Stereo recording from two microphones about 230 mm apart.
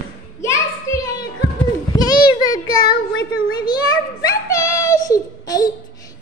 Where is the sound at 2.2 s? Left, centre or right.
Centre.